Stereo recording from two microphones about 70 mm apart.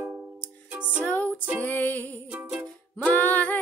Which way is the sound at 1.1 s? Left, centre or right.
Left.